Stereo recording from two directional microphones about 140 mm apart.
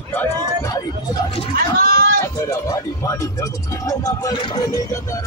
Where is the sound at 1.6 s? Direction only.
90° right.